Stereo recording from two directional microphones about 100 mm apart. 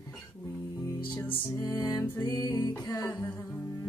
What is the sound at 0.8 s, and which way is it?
Music, 35° left (ahead or behind).